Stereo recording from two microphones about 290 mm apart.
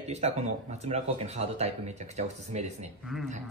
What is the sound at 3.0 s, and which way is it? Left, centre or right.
Speech, centre.